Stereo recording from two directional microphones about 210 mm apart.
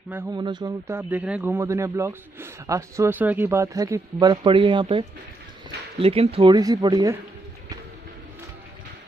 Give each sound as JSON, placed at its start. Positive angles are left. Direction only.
{"t": 0.1, "sound": "a man's voice", "side_deg": -10}